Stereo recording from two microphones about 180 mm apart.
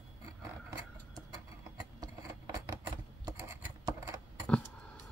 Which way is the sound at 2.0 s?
20° right (ahead or behind).